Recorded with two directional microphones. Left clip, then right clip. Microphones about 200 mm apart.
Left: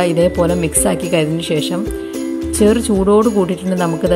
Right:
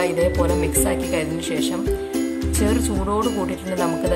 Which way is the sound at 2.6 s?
25° left (ahead or behind).